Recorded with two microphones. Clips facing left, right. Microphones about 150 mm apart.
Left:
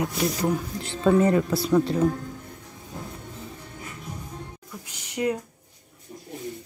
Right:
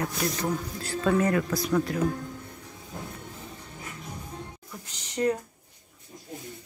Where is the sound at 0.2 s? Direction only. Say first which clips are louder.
Left 5 dB; 15° left (ahead or behind); by 2.0 s 30° left (ahead or behind).